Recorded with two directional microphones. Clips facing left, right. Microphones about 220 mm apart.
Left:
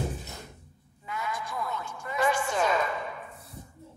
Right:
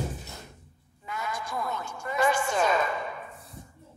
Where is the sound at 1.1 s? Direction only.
45° right (ahead or behind).